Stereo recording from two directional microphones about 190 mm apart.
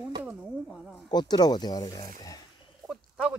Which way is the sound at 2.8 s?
5° right (ahead or behind).